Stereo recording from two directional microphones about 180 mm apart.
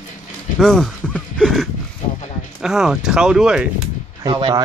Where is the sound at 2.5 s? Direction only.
Centre (ahead or behind).